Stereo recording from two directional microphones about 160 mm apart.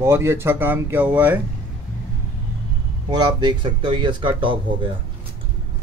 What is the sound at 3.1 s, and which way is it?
Speech, 25° right (ahead or behind).